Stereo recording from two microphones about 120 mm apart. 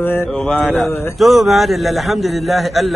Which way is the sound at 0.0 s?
15° left (ahead or behind).